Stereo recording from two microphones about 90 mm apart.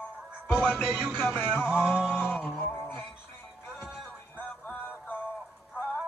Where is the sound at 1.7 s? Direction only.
20° left (ahead or behind).